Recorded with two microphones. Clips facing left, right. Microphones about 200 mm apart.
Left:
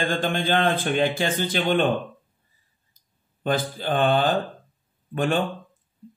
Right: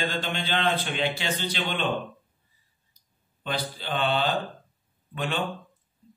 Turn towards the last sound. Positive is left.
turn(degrees=45)  # may be behind; listen again after turning